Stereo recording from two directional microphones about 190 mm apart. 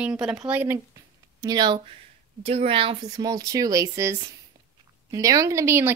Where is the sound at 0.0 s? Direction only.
5° right (ahead or behind).